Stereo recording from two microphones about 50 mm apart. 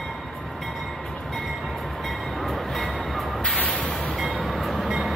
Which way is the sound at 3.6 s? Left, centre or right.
Left.